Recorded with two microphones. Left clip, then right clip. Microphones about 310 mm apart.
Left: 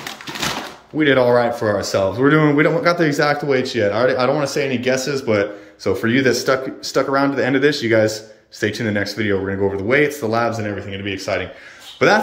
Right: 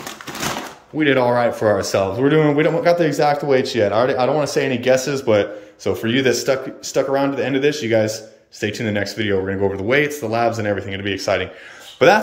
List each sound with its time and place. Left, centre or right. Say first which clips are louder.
0.9 s speech: left 2 dB; centre